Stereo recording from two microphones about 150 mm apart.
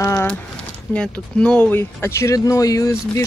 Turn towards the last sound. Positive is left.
turn(degrees=20)  # may be behind; listen again after turning